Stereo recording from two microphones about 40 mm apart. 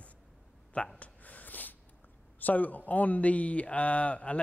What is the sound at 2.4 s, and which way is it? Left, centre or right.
Speech, left.